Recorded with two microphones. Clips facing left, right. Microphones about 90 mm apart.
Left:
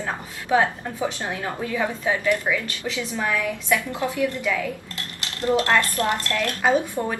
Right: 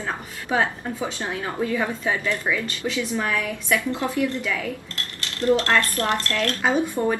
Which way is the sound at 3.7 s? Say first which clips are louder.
Right 1 dB; 20° left (ahead or behind).